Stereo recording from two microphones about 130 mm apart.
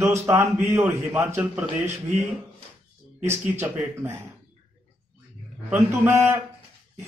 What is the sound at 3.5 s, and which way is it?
Speech, 15° right (ahead or behind).